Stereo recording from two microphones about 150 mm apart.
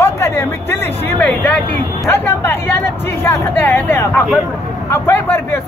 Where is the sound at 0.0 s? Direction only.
15° left (ahead or behind).